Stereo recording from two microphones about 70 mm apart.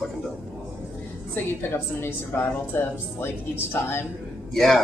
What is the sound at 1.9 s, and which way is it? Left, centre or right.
A woman's voice, left.